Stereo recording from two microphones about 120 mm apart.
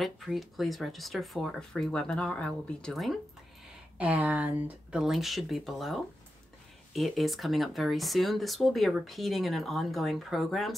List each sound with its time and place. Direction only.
0.0 s speech: centre (ahead or behind)
4.0 s speech: 10° right (ahead or behind)